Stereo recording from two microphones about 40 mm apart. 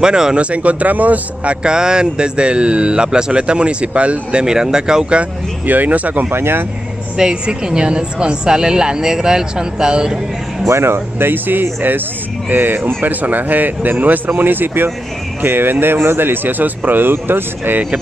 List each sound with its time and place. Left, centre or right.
0.0 s speech: centre; by 1.6 s right
1.6 s speech: centre
5.7 s speech: right
6.3 s speech: right
7.2 s speech: centre
10.8 s speech: right
13.1 s speech: right